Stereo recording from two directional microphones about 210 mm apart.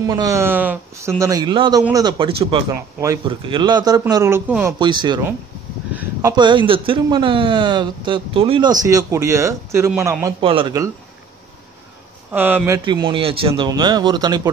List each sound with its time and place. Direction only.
0.1 s a man's voice: 15° right (ahead or behind)
4.7 s a man's voice: 20° right (ahead or behind)
10.4 s a man's voice: 25° right (ahead or behind)
12.3 s a man's voice: 10° right (ahead or behind)